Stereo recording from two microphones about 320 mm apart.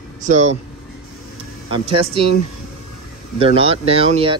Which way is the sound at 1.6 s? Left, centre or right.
Centre.